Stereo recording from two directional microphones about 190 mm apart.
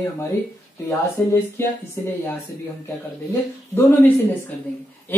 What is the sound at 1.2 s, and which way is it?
Speech, 10° left (ahead or behind).